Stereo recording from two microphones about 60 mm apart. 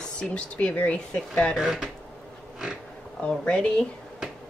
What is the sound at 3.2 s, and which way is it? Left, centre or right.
Speech, centre.